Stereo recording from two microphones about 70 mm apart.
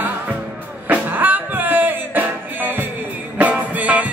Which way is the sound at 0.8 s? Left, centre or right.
Right.